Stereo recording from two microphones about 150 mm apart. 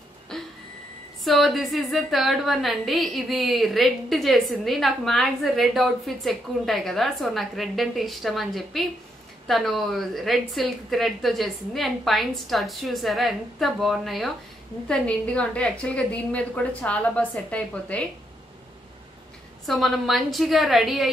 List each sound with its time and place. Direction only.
0.3 s a sound: 5° left (ahead or behind)
1.2 s a woman's voice: centre (ahead or behind)
19.6 s a woman's voice: centre (ahead or behind)